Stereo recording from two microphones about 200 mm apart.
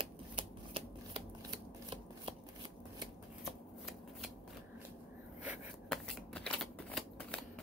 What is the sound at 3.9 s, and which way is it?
Shuffling cards, centre (ahead or behind).